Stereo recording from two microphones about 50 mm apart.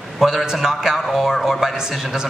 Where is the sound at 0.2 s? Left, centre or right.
Centre.